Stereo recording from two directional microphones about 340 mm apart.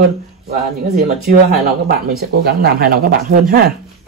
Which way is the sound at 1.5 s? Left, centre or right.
Right.